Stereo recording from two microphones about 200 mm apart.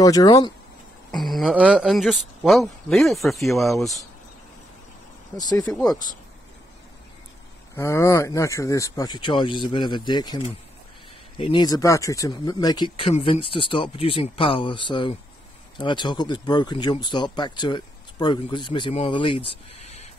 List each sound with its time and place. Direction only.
0.0 s speech: 20° left (ahead or behind)
1.1 s speech: centre (ahead or behind)
5.4 s speech: 20° left (ahead or behind)
7.7 s speech: 15° left (ahead or behind); by 20.1 s 35° left (ahead or behind)